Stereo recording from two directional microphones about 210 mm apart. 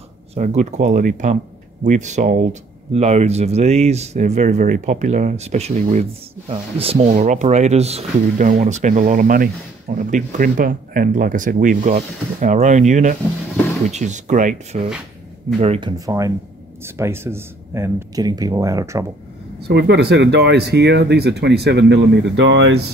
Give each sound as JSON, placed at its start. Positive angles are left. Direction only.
{"t": 0.3, "sound": "speech", "side_deg": -35}
{"t": 16.1, "sound": "speech", "side_deg": -15}
{"t": 19.7, "sound": "speech", "side_deg": -50}